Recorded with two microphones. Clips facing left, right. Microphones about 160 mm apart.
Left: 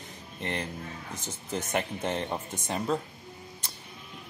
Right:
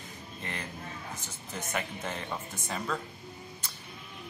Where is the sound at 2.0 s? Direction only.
30° left (ahead or behind).